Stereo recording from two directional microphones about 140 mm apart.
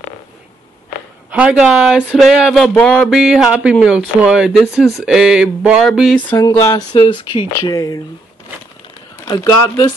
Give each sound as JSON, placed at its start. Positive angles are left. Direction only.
{"t": 1.3, "sound": "speech", "side_deg": -10}
{"t": 2.7, "sound": "a sound", "side_deg": 10}
{"t": 3.2, "sound": "speech", "side_deg": -5}
{"t": 6.3, "sound": "speech", "side_deg": 20}
{"t": 6.9, "sound": "speech", "side_deg": 35}
{"t": 7.6, "sound": "speech", "side_deg": 25}
{"t": 9.2, "sound": "speech", "side_deg": 30}